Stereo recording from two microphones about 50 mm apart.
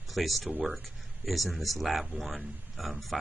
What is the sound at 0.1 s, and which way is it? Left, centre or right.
Speech, centre.